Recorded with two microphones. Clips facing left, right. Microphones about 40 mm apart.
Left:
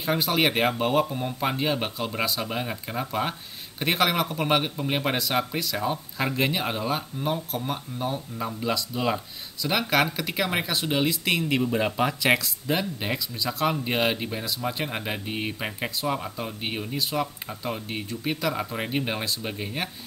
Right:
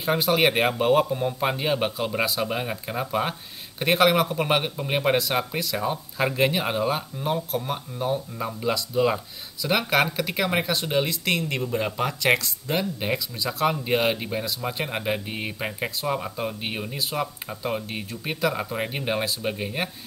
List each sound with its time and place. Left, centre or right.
0.0 s a man's voice: centre